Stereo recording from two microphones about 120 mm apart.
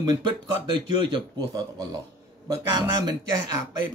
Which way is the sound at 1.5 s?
30° right (ahead or behind).